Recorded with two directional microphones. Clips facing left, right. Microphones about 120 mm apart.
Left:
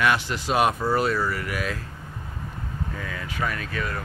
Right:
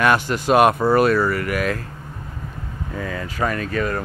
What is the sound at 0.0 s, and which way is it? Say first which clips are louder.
Speech: right 5 dB; 50° right (ahead or behind).